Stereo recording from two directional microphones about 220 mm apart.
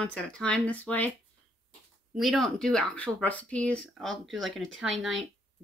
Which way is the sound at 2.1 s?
Centre (ahead or behind).